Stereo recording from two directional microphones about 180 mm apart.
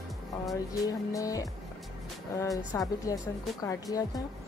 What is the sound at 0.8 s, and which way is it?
Speech, 20° left (ahead or behind).